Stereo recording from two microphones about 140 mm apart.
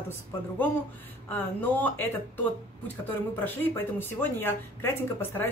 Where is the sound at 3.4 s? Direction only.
15° left (ahead or behind).